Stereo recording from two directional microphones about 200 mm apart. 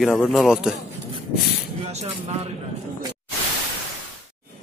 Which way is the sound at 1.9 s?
35° right (ahead or behind).